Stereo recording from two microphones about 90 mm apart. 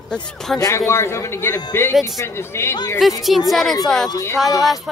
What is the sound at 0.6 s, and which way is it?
A man's voice, 35° left (ahead or behind).